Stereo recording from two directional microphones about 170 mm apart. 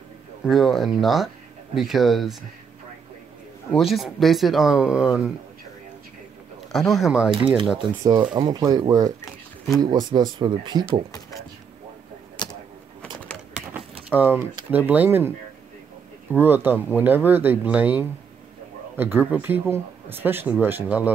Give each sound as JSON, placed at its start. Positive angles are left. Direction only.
{"t": 0.5, "sound": "speech", "side_deg": 0}
{"t": 3.7, "sound": "speech", "side_deg": 0}
{"t": 6.7, "sound": "speech", "side_deg": 0}
{"t": 8.0, "sound": "speech", "side_deg": -25}
{"t": 11.1, "sound": "a sound", "side_deg": 20}
{"t": 13.5, "sound": "a sound", "side_deg": -5}
{"t": 14.0, "sound": "speech", "side_deg": -10}
{"t": 16.3, "sound": "speech", "side_deg": -10}